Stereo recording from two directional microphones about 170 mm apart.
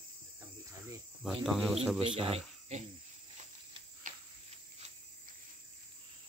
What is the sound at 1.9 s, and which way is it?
Cricket, 30° right (ahead or behind).